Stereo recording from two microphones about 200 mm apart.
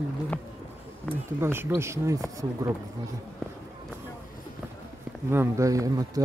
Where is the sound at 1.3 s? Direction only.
10° right (ahead or behind).